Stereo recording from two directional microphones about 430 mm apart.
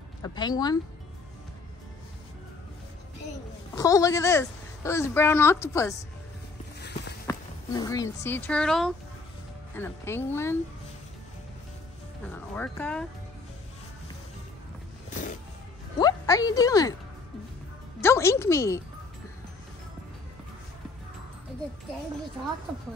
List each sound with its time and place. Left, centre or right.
0.2 s a woman's voice: centre
3.7 s a woman's voice: centre
7.2 s speech: centre
12.5 s speech: centre
15.0 s music: centre
16.0 s a woman's voice: centre
18.0 s a woman's voice: centre